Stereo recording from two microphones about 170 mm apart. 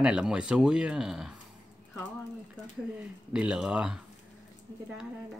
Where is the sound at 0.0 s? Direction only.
5° right (ahead or behind).